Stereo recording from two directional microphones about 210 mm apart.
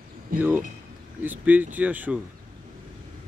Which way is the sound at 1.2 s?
10° right (ahead or behind).